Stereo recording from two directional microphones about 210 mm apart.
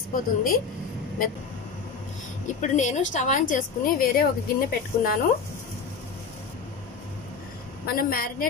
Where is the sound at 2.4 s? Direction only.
35° left (ahead or behind).